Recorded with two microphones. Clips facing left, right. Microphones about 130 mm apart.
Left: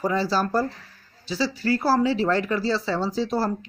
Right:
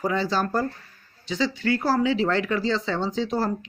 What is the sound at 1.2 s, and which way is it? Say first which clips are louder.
Speech: even; 35° left (ahead or behind).